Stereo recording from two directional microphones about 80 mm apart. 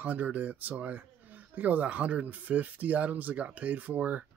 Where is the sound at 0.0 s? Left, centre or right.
Centre.